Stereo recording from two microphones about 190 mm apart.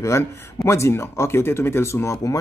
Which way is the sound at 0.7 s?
15° left (ahead or behind).